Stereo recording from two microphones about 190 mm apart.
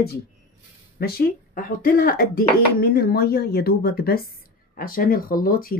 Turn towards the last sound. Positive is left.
turn(degrees=50)  # may be behind; listen again after turning